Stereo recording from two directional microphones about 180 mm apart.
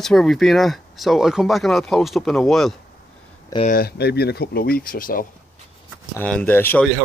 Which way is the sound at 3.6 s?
55° left (ahead or behind).